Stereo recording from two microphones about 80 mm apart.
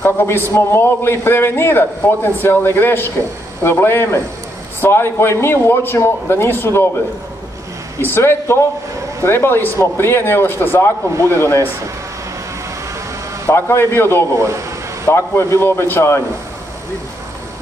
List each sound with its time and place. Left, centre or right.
0.0 s a man's voice: left
8.0 s a man's voice: left
13.5 s a man's voice: left